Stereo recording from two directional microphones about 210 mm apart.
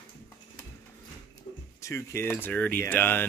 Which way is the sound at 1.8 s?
15° left (ahead or behind).